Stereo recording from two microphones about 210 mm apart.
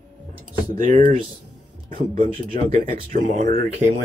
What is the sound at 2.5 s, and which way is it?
Speech, 40° right (ahead or behind).